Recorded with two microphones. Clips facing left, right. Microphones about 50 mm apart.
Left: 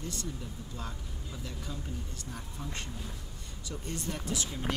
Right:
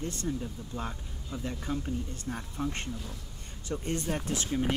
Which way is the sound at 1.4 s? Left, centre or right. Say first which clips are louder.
Right 9 dB; right.